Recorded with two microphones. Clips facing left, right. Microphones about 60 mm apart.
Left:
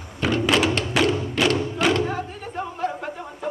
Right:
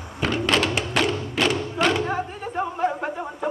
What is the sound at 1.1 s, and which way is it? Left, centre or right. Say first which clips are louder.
Music: left 1 dB; centre.